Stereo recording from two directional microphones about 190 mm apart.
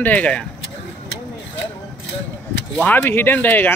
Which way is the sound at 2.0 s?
75° left (ahead or behind).